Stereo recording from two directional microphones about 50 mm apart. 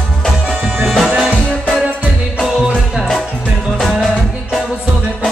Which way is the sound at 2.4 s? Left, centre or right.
Centre.